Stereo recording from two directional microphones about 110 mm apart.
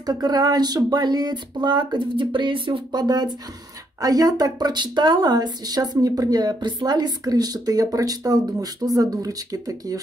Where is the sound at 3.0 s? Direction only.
40° right (ahead or behind).